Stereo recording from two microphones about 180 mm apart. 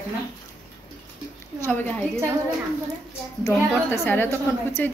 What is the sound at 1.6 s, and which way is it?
Speech, 10° left (ahead or behind).